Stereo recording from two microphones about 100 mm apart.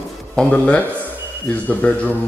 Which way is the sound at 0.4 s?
10° left (ahead or behind).